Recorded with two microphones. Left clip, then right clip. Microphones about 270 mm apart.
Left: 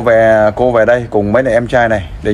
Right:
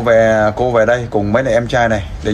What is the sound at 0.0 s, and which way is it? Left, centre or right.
Speech, left.